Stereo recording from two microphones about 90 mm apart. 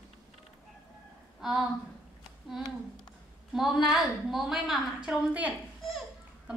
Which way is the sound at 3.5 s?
5° right (ahead or behind).